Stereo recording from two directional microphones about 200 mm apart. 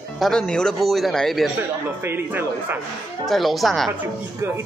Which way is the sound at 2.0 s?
10° right (ahead or behind).